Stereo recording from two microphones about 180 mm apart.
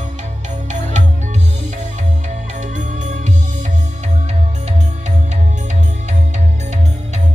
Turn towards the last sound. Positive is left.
turn(degrees=-40)  # may be behind; listen again after turning